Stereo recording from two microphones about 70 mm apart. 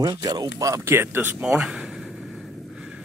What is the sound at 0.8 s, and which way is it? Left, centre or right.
Speech, right.